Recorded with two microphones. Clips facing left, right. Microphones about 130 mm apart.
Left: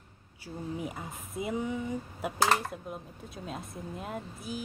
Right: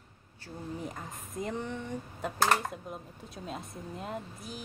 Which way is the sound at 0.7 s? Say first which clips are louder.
Left 2 dB; 10° left (ahead or behind).